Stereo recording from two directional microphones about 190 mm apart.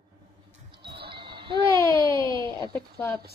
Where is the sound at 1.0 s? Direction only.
25° right (ahead or behind).